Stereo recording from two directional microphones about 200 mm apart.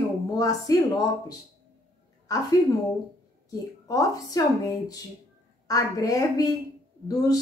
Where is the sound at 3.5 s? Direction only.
15° left (ahead or behind).